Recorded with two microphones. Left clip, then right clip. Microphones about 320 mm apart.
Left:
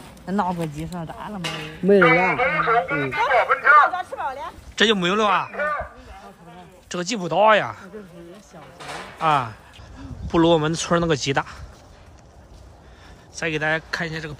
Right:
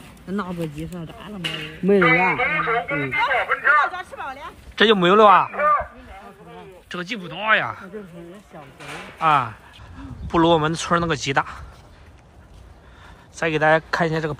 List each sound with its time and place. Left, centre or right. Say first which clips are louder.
0.3 s speech: left 4 dB; left
1.4 s speech: right 3 dB; left
1.9 s speech: left 1 dB; centre
3.9 s speech: left 4 dB; left
4.7 s speech: right 5 dB; centre
5.5 s a sound: right 6 dB; centre
6.9 s speech: left 5 dB; centre
9.2 s speech: right 2 dB; centre
13.4 s speech: right 5 dB; centre